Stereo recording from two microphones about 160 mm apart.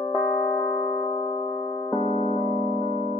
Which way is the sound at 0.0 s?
25° left (ahead or behind).